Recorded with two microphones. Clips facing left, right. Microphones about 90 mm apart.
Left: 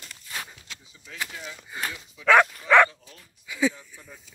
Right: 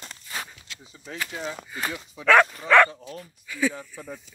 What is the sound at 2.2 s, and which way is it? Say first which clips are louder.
Dog: right 1 dB; 10° left (ahead or behind).